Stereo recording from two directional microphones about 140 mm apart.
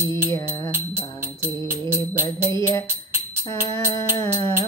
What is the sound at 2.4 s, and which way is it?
Music, 25° left (ahead or behind).